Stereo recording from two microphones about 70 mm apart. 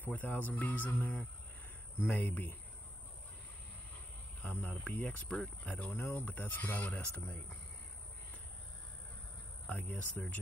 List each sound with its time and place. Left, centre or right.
0.0 s speech: left
4.4 s speech: left
5.9 s speech: left
9.7 s speech: left